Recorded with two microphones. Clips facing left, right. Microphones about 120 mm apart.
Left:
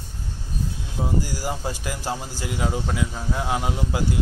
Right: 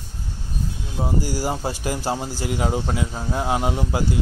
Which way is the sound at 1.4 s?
30° right (ahead or behind).